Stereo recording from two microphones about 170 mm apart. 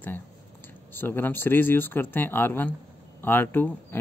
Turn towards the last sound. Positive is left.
turn(degrees=10)  # may be behind; listen again after turning